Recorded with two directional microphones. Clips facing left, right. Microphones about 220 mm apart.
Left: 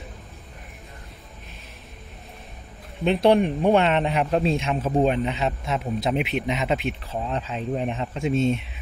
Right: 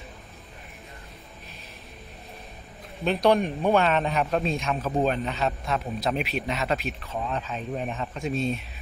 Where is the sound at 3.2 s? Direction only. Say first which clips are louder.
Left 3 dB; 30° left (ahead or behind).